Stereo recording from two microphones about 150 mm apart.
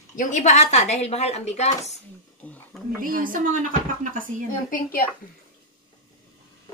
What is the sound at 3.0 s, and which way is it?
A woman's voice, 65° right (ahead or behind).